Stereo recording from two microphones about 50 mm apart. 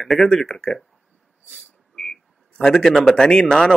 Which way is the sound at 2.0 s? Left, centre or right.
Centre.